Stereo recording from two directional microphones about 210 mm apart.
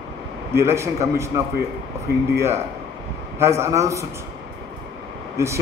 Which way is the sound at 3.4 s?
15° right (ahead or behind).